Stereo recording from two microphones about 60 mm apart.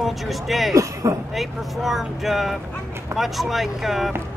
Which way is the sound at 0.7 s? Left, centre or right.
Right.